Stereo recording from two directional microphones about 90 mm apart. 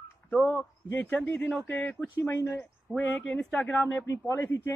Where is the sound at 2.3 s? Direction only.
30° left (ahead or behind).